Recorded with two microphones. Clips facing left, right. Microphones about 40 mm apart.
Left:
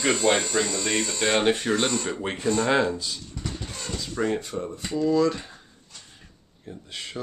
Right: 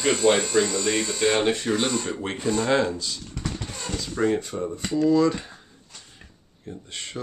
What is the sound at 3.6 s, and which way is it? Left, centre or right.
Speech, centre.